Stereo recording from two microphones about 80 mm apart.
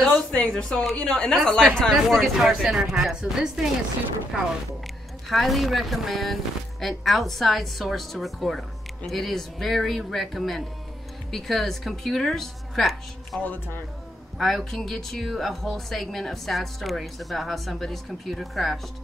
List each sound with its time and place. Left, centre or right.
0.0 s a sound: centre
0.4 s a woman's voice: centre
5.3 s speech: centre
13.4 s speech: left
14.4 s speech: centre